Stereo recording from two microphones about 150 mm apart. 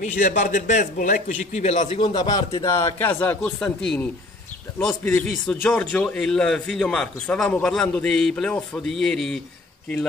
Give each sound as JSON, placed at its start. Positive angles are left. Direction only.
{"t": 0.0, "sound": "a man's voice", "side_deg": 60}
{"t": 2.0, "sound": "a man's voice", "side_deg": 30}